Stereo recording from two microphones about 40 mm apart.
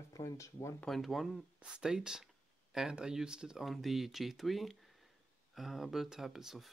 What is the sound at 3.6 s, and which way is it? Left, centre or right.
Speech, centre.